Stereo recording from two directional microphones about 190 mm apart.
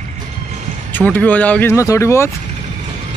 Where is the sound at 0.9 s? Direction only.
10° left (ahead or behind).